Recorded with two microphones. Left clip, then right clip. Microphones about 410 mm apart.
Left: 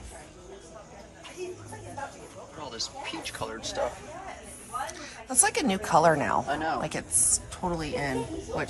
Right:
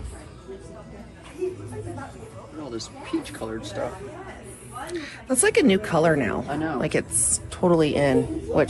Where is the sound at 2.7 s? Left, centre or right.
Centre.